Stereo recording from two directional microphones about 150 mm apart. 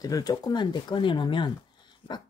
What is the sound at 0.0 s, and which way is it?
Speech, 25° left (ahead or behind).